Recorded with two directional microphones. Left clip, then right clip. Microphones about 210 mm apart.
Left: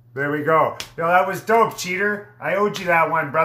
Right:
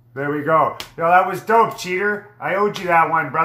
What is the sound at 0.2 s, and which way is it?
A man's voice, 15° left (ahead or behind).